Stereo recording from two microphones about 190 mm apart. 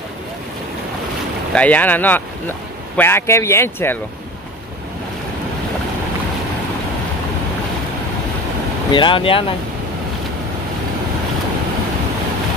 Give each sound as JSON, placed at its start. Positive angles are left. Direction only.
{"t": 1.5, "sound": "speech", "side_deg": 5}
{"t": 8.9, "sound": "speech", "side_deg": 25}